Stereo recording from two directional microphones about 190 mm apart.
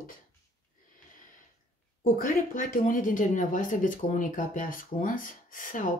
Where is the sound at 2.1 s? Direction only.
45° left (ahead or behind).